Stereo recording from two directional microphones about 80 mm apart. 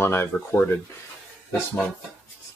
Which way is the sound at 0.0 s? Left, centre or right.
Left.